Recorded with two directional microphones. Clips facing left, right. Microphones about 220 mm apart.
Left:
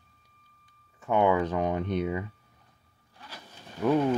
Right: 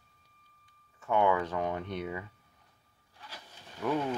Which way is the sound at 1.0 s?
20° left (ahead or behind).